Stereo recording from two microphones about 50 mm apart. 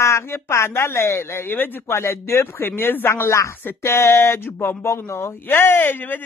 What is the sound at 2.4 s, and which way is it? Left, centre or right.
Speech, left.